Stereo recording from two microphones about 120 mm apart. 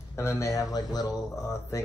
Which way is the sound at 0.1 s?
25° left (ahead or behind).